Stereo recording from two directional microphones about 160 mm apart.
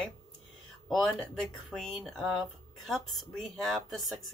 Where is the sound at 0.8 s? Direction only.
5° left (ahead or behind).